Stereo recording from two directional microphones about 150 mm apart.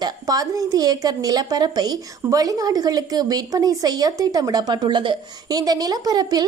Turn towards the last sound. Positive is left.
turn(degrees=-25)  # may be behind; listen again after turning